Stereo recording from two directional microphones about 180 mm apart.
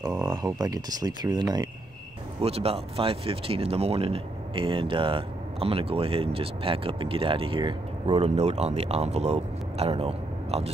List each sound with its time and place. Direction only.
0.1 s speech: 25° right (ahead or behind)
2.4 s speech: 35° right (ahead or behind)